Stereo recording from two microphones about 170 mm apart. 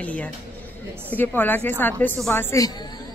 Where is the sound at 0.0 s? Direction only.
10° left (ahead or behind).